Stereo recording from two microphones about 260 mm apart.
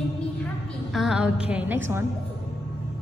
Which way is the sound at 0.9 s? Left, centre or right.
Centre.